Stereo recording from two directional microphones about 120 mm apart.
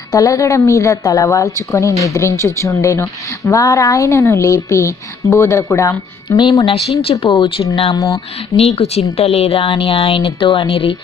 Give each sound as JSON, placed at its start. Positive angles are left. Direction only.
{"t": 0.1, "sound": "a woman's voice", "side_deg": 30}
{"t": 6.2, "sound": "speech", "side_deg": 40}
{"t": 7.9, "sound": "a woman's voice", "side_deg": 30}
{"t": 8.5, "sound": "speech", "side_deg": 55}